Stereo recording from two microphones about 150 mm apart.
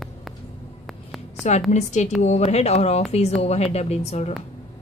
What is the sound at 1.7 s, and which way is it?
Speech, 50° left (ahead or behind).